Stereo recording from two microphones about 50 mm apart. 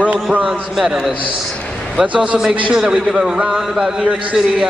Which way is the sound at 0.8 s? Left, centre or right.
Centre.